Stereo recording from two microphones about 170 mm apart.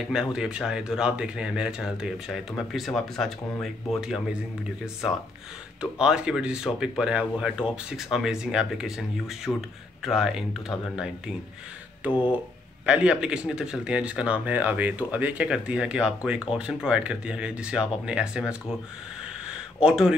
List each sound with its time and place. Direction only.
0.0 s speech: 5° right (ahead or behind)
5.8 s speech: 5° right (ahead or behind)
12.8 s speech: 5° right (ahead or behind)
19.2 s a sound: 5° right (ahead or behind)